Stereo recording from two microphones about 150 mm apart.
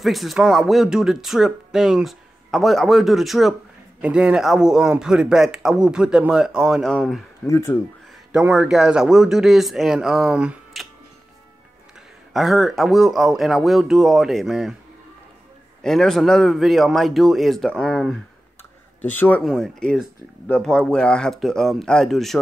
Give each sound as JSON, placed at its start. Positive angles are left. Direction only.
{"t": 0.0, "sound": "speech", "side_deg": 0}
{"t": 7.4, "sound": "speech", "side_deg": 20}
{"t": 8.5, "sound": "speech", "side_deg": -5}
{"t": 12.3, "sound": "speech", "side_deg": 0}
{"t": 15.8, "sound": "speech", "side_deg": 0}
{"t": 18.9, "sound": "speech", "side_deg": 10}